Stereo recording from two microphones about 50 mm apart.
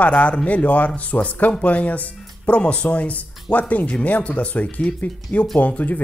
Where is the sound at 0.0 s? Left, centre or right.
Left.